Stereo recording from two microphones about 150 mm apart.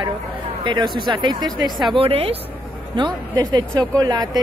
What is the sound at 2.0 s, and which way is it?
Speech, 40° right (ahead or behind).